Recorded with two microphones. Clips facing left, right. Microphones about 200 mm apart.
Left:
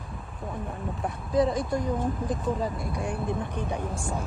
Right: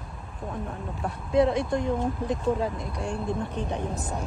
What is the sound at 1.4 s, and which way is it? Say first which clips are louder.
Speech: right 2 dB; centre (ahead or behind).